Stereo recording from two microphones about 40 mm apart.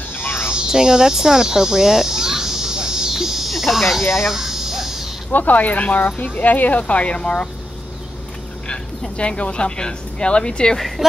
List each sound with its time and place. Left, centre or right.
0.1 s a sound: left
0.5 s a sound: centre
4.3 s insect: centre
5.3 s speech: left
6.8 s speech: left
9.1 s speech: left
11.0 s speech: centre